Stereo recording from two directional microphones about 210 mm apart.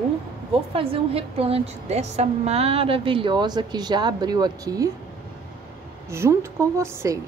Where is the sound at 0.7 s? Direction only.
25° right (ahead or behind).